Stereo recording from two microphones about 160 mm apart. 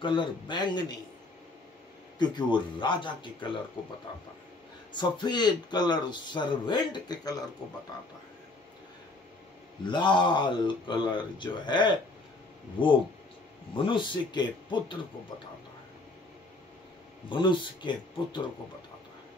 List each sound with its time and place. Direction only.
0.0 s speech: 30° left (ahead or behind)
2.1 s speech: 25° left (ahead or behind)
4.9 s speech: 30° left (ahead or behind)
9.8 s speech: 30° left (ahead or behind)
17.3 s speech: 30° left (ahead or behind)